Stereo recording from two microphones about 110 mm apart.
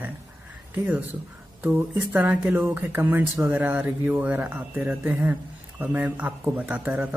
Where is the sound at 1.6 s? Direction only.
15° right (ahead or behind).